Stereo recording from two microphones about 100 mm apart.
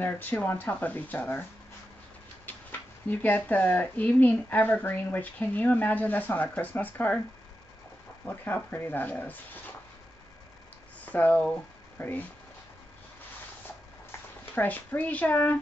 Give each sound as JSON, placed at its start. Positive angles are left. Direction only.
{"t": 0.0, "sound": "speech", "side_deg": 20}
{"t": 3.1, "sound": "speech", "side_deg": 20}
{"t": 8.3, "sound": "speech", "side_deg": 15}
{"t": 11.1, "sound": "speech", "side_deg": 15}
{"t": 14.5, "sound": "speech", "side_deg": 20}